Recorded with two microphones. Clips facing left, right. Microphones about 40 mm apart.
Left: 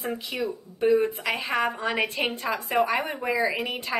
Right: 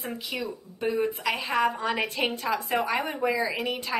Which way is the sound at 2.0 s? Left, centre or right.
Centre.